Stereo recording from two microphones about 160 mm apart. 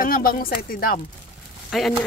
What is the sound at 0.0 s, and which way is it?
Speech, 65° left (ahead or behind).